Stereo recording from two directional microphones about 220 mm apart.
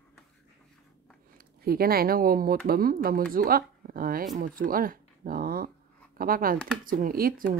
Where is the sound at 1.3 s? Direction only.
45° right (ahead or behind).